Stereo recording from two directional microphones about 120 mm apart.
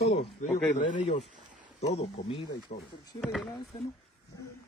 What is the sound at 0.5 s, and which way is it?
Speech, 5° left (ahead or behind).